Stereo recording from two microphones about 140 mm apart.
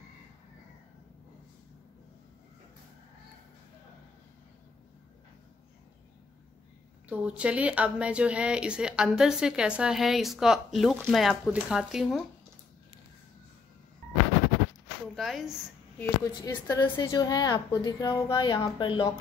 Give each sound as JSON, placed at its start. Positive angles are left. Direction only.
{"t": 7.1, "sound": "speech", "side_deg": -10}
{"t": 15.1, "sound": "speech", "side_deg": 0}
{"t": 16.0, "sound": "a woman's voice", "side_deg": 20}
{"t": 16.8, "sound": "a woman's voice", "side_deg": 35}